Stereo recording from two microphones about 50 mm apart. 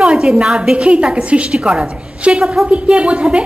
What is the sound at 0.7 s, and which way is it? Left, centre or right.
A woman's voice, right.